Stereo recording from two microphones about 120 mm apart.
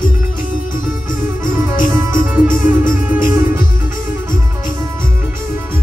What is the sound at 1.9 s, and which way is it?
Music, 25° right (ahead or behind).